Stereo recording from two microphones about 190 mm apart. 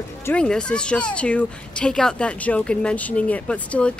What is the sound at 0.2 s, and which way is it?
Speech, 5° left (ahead or behind).